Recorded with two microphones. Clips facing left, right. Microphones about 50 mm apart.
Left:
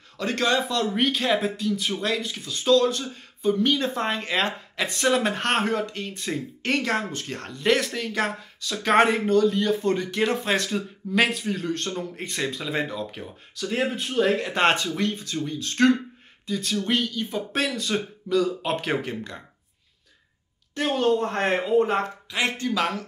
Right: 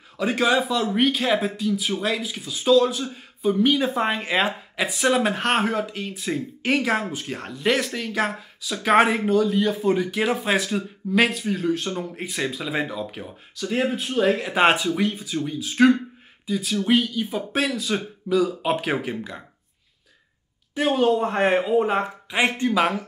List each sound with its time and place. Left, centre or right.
0.2 s speech: centre
20.7 s speech: centre
22.3 s speech: right